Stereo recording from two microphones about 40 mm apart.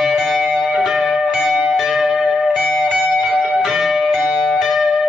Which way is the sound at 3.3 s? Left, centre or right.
Centre.